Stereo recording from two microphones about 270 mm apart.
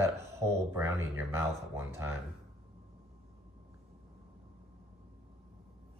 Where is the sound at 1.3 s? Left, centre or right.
Centre.